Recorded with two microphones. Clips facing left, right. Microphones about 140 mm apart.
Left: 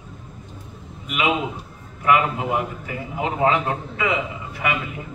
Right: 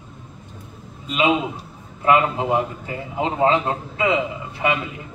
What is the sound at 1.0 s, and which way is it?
A man's voice, 30° right (ahead or behind).